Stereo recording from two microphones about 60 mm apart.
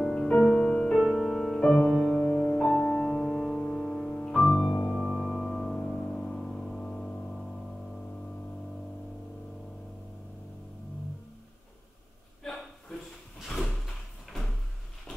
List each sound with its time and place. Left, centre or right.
0.0 s music: centre
0.9 s music: centre
5.0 s music: centre
5.8 s music: centre
13.5 s sliding door: centre